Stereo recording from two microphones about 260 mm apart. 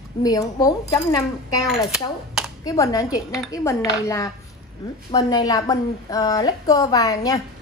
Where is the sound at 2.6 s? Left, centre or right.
Centre.